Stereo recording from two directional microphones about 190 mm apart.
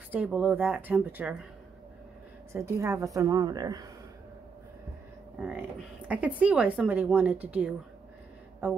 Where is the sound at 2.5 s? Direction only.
15° right (ahead or behind).